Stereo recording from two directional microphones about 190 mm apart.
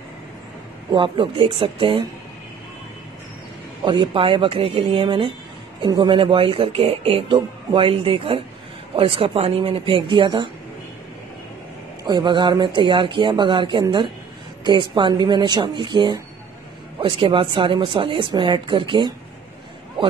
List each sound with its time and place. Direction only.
0.9 s speech: 25° right (ahead or behind)
3.8 s speech: 25° right (ahead or behind)
12.0 s speech: 25° right (ahead or behind)